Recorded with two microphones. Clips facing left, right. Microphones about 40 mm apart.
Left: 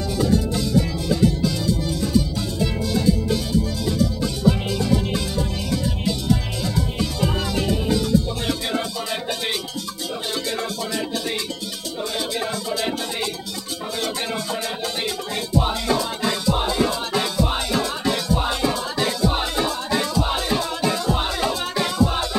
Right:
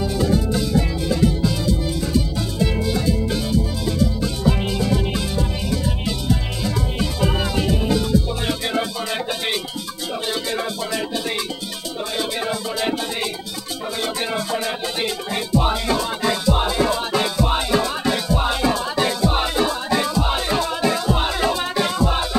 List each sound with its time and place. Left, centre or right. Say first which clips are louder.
0.0 s music: right 1 dB; centre
12.2 s music: right 3 dB; centre